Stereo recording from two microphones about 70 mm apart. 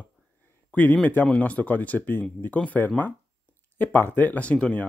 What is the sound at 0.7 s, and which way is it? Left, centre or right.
Speech, left.